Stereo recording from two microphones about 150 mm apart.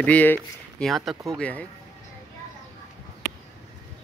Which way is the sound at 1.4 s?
10° left (ahead or behind).